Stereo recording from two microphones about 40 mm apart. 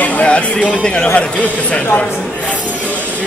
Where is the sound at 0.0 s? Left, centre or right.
Left.